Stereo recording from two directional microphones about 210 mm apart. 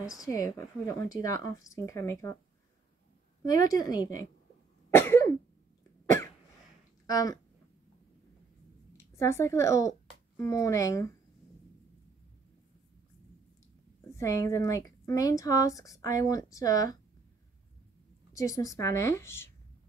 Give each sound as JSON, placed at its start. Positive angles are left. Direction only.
{"t": 0.2, "sound": "speech", "side_deg": 15}
{"t": 3.6, "sound": "speech", "side_deg": 15}
{"t": 4.9, "sound": "cough", "side_deg": 10}
{"t": 7.1, "sound": "speech", "side_deg": 15}
{"t": 8.9, "sound": "speech", "side_deg": 15}
{"t": 14.0, "sound": "speech", "side_deg": 15}
{"t": 18.3, "sound": "speech", "side_deg": 15}